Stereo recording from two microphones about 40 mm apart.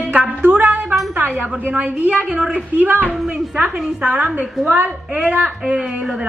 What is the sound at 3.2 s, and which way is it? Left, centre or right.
Speech, right.